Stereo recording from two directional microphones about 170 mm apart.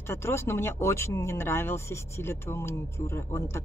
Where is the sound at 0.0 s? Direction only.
15° left (ahead or behind).